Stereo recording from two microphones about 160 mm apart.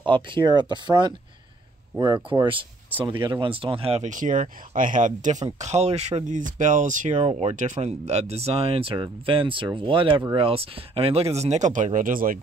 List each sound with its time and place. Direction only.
0.0 s speech: 30° right (ahead or behind); by 12.4 s 60° right (ahead or behind)